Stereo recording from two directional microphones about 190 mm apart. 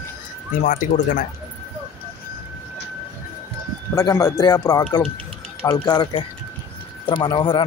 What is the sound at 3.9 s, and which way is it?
A man's voice, 15° left (ahead or behind).